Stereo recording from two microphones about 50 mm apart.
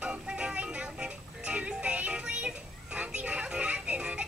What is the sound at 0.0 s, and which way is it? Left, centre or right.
Music, centre.